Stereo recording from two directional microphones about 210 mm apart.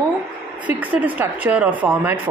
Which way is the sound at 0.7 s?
5° right (ahead or behind).